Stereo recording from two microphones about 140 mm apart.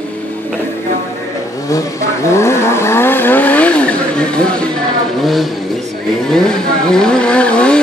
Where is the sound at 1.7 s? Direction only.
20° left (ahead or behind); by 5.5 s centre (ahead or behind).